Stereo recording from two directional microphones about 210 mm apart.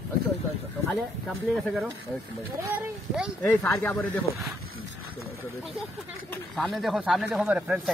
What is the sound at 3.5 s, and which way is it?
Speech, 10° left (ahead or behind).